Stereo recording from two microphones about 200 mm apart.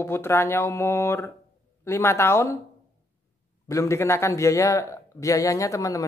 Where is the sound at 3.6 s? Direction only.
15° left (ahead or behind).